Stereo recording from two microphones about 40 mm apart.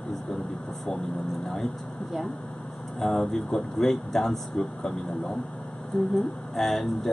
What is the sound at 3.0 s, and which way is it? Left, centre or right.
Speech, centre.